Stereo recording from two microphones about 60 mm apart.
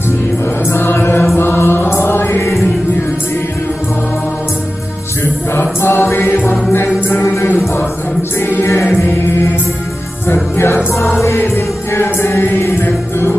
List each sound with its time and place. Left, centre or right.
0.7 s mantra: left
1.3 s music: left
5.2 s music: left